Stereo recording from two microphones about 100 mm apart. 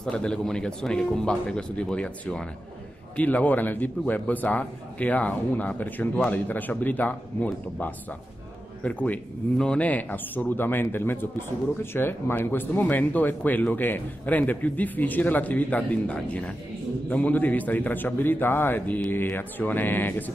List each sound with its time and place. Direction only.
0.0 s speech: 10° left (ahead or behind)
8.8 s speech: 15° left (ahead or behind)